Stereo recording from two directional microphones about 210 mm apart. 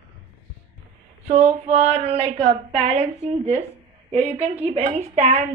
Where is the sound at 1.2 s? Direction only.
30° right (ahead or behind).